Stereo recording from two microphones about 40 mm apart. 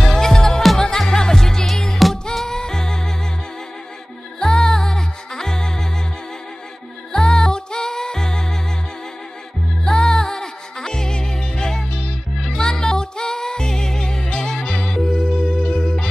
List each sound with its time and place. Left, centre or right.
0.0 s music: centre
2.0 s music: centre
2.3 s music: centre
4.4 s music: centre
7.1 s music: centre
9.8 s music: centre